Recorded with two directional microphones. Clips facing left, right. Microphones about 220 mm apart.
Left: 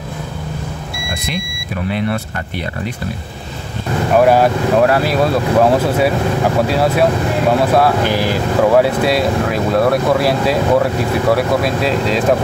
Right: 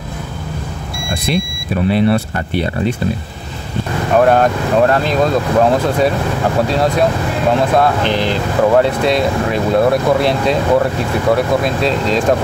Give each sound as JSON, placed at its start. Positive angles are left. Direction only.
{"t": 1.9, "sound": "speech", "side_deg": -30}
{"t": 4.2, "sound": "speech", "side_deg": 5}